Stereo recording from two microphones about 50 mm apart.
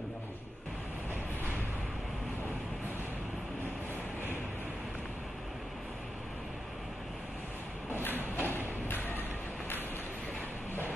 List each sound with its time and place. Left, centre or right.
8.4 s thump: left